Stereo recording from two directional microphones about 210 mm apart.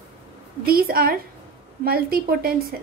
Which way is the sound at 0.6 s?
45° right (ahead or behind).